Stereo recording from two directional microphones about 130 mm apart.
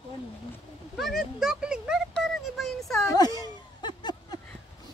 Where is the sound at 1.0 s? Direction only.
Centre (ahead or behind).